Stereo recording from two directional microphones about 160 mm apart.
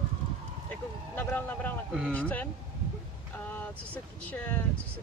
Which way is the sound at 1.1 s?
10° left (ahead or behind).